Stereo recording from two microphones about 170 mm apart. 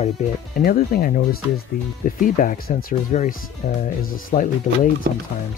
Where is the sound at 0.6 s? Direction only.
60° left (ahead or behind).